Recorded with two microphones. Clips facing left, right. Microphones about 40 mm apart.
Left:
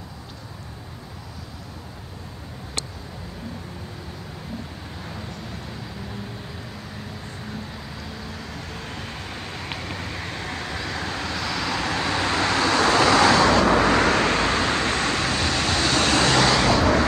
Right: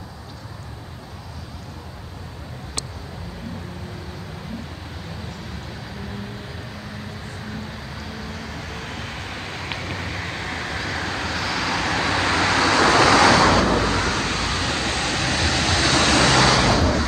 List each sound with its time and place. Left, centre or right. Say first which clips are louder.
8.3 s vehicle: right 2 dB; right
11.7 s vehicle: right 3 dB; right
13.4 s vehicle: right 1 dB; centre
13.8 s vehicle: left 4 dB; left
15.2 s vehicle: right 1 dB; right
16.3 s vehicle: right 2 dB; centre